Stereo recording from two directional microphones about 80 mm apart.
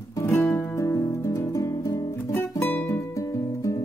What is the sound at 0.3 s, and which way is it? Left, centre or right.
Music, left.